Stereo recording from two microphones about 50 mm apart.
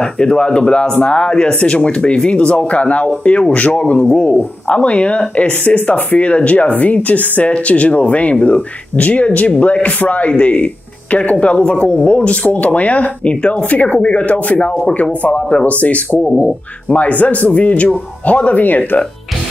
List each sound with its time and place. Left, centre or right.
0.0 s speech: centre
16.3 s speech: centre
16.9 s speech: left